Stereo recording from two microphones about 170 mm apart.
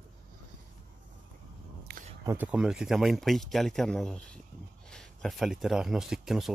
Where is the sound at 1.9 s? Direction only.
65° right (ahead or behind).